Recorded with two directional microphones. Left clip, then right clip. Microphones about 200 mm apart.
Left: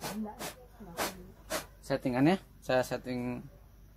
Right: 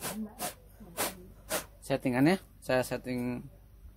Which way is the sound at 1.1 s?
40° right (ahead or behind).